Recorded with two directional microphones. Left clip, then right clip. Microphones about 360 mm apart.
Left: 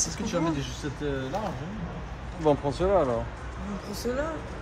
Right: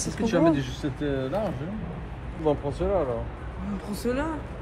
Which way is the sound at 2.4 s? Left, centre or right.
Left.